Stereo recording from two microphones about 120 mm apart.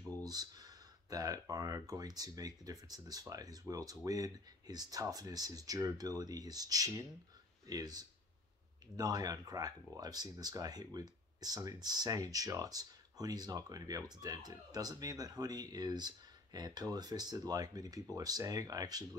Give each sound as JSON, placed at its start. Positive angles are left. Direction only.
{"t": 0.2, "sound": "speech", "side_deg": -35}